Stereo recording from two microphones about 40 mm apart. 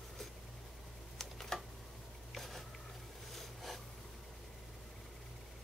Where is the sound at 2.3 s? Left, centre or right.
Centre.